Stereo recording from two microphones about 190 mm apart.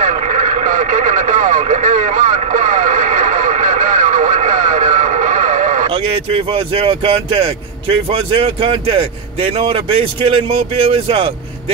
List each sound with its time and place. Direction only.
0.0 s radio: 40° right (ahead or behind)
6.3 s speech: 30° right (ahead or behind)